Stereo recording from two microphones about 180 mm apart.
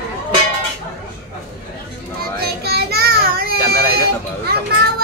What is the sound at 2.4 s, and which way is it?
Child singing, 60° right (ahead or behind).